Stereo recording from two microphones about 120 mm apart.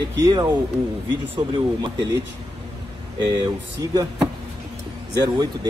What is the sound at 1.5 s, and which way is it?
Speech, 45° right (ahead or behind).